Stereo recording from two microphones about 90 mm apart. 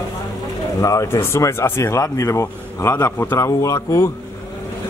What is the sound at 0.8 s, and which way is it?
Speech, 40° left (ahead or behind).